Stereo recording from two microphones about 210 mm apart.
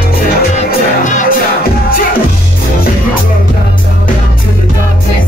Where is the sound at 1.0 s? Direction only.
35° left (ahead or behind).